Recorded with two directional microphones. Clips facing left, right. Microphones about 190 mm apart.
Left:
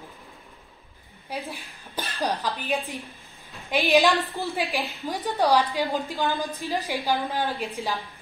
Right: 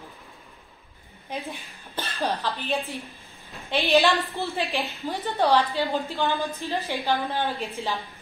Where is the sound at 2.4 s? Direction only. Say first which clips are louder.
Even; 15° left (ahead or behind).